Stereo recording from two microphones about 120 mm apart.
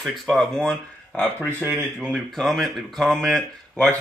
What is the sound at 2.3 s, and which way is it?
Speech, centre (ahead or behind).